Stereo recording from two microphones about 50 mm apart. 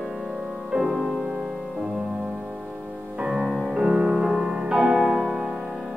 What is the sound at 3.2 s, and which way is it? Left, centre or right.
Music, centre.